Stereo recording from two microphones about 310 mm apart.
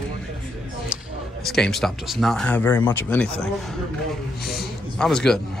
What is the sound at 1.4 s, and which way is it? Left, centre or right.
Speech, centre.